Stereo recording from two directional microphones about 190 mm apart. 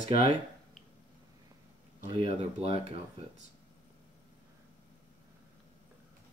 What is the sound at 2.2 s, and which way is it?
Speech, 35° right (ahead or behind).